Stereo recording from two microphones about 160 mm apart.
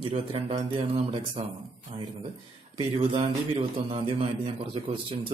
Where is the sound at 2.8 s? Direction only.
35° right (ahead or behind).